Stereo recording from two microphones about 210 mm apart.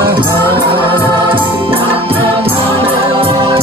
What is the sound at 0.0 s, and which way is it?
Music, 20° right (ahead or behind).